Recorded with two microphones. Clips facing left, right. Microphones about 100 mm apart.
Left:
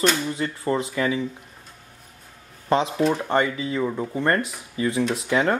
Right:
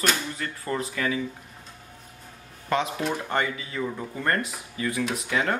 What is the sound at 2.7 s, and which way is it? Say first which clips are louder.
Speech: left 5 dB; 30° left (ahead or behind).